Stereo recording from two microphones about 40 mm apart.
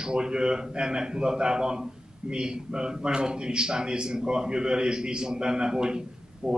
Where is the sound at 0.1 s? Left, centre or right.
Right.